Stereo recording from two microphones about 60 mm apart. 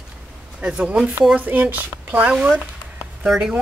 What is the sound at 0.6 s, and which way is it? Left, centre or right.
Speech, centre.